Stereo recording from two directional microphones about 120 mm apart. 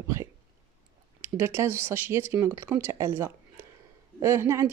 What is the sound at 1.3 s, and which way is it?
Speech, 20° right (ahead or behind).